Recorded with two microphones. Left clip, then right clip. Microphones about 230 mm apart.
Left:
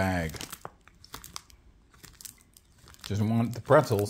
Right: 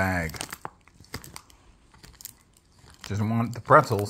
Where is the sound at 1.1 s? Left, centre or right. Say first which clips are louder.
Right 2 dB; centre.